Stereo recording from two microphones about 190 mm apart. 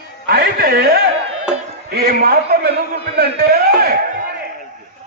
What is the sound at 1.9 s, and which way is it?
A man's voice, 50° right (ahead or behind).